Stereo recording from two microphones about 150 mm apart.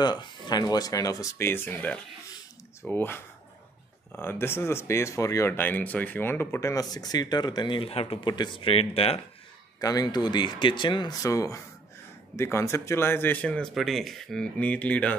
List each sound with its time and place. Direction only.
0.0 s speech: 30° left (ahead or behind)
9.8 s speech: 25° left (ahead or behind); by 15.1 s 10° left (ahead or behind)